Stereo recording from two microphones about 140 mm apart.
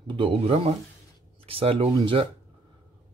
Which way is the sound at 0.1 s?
45° right (ahead or behind).